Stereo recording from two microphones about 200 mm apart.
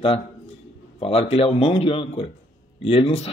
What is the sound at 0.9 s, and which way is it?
Speech, 30° left (ahead or behind).